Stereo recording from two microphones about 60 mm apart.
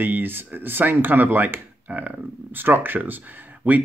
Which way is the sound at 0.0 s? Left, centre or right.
Right.